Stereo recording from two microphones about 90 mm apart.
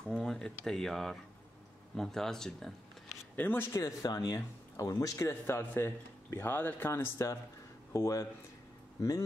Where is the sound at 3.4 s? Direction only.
20° left (ahead or behind).